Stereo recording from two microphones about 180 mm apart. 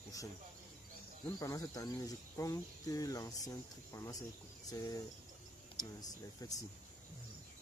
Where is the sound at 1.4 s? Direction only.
20° left (ahead or behind).